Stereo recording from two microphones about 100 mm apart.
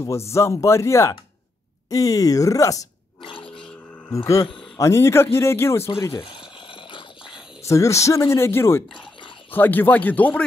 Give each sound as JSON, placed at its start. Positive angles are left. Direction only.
{"t": 0.3, "sound": "speech", "side_deg": 30}
{"t": 3.3, "sound": "grunt", "side_deg": 60}
{"t": 4.7, "sound": "speech", "side_deg": 30}
{"t": 7.6, "sound": "speech", "side_deg": 30}